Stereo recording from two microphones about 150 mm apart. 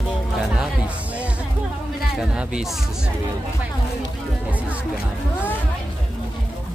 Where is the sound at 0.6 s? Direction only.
10° right (ahead or behind).